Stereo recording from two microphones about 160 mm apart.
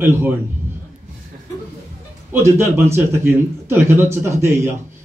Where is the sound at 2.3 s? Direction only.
15° right (ahead or behind).